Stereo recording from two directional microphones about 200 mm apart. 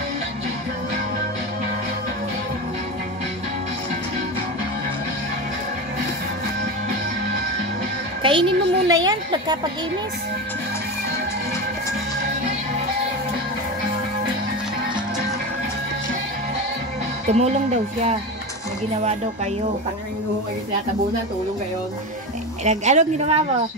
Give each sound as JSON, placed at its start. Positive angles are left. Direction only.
{"t": 8.2, "sound": "a woman's voice", "side_deg": -25}
{"t": 17.3, "sound": "speech", "side_deg": -35}
{"t": 22.7, "sound": "speech", "side_deg": -35}